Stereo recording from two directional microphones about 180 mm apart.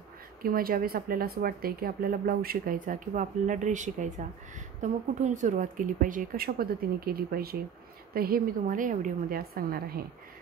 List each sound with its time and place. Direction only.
0.4 s a woman's voice: 55° right (ahead or behind)